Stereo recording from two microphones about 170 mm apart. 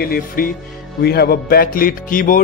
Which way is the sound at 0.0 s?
60° left (ahead or behind).